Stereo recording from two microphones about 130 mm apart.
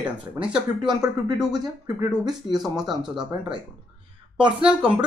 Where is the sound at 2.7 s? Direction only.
30° right (ahead or behind).